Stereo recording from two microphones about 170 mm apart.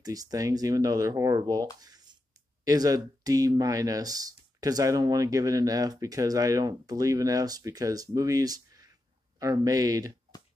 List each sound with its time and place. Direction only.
0.0 s speech: 20° right (ahead or behind)